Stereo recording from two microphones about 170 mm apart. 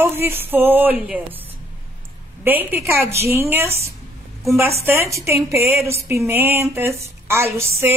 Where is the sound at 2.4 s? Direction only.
10° right (ahead or behind).